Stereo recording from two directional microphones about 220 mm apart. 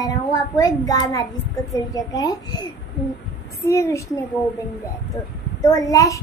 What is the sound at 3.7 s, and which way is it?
Child singing, 15° left (ahead or behind).